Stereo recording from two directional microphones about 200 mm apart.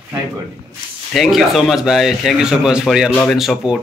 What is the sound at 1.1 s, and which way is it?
Speech, centre (ahead or behind).